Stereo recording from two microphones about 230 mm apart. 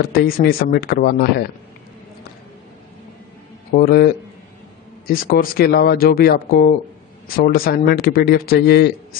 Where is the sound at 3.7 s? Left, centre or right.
Left.